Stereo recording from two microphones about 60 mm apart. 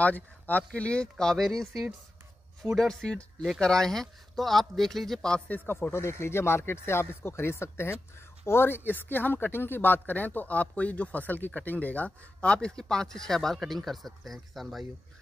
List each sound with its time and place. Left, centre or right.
0.0 s speech: left
1.1 s speech: centre
5.7 s speech: left; by 14.9 s centre